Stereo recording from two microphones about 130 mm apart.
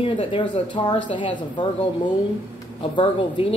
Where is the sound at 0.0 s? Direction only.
45° left (ahead or behind).